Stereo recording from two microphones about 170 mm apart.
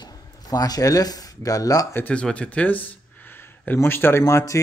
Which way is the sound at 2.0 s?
5° left (ahead or behind).